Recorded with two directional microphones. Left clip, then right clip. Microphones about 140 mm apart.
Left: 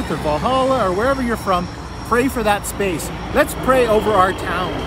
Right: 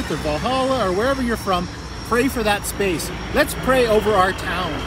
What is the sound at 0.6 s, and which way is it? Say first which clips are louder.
Speech: left 3 dB; centre (ahead or behind).